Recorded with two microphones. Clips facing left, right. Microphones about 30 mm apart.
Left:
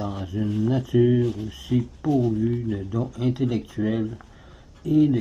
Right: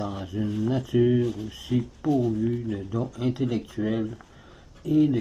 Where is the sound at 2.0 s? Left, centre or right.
Left.